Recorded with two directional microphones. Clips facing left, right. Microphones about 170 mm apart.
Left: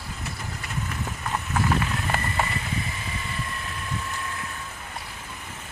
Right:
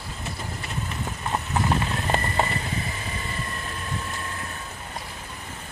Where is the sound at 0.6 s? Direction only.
25° right (ahead or behind).